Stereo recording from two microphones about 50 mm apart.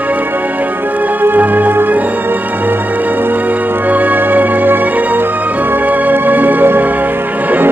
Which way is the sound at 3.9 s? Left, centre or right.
Right.